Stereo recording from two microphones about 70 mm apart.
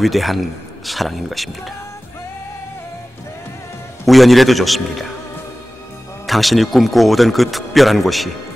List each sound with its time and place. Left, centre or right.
0.0 s a man's voice: centre
4.0 s a man's voice: centre
6.2 s a man's voice: centre